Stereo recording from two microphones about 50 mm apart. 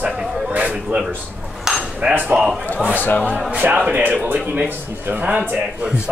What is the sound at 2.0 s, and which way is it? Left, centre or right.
Speech, right.